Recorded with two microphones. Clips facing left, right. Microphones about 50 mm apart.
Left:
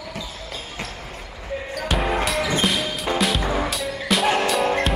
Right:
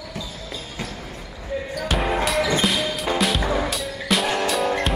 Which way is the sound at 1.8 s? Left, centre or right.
Centre.